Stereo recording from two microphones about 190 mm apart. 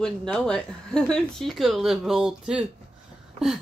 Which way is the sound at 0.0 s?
5° left (ahead or behind).